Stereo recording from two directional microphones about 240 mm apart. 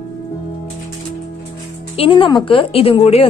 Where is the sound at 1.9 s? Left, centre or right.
Left.